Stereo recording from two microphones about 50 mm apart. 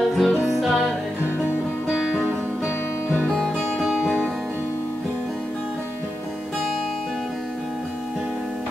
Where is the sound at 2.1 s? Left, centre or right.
Right.